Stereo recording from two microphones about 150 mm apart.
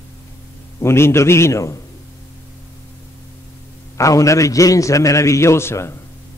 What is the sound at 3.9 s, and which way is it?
A man's voice, 20° left (ahead or behind).